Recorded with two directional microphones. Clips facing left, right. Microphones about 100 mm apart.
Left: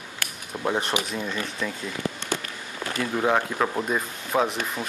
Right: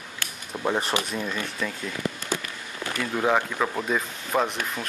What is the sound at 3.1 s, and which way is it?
Speech, 5° left (ahead or behind).